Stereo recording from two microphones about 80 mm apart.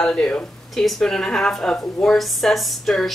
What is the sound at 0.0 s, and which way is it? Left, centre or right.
Speech, centre.